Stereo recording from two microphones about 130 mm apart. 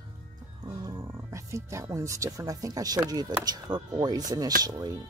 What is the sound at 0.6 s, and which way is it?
Speech, 30° right (ahead or behind).